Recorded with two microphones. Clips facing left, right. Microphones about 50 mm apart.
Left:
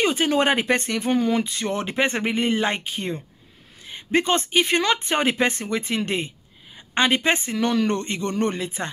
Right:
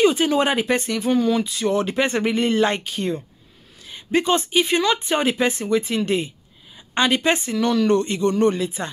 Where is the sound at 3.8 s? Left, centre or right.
Left.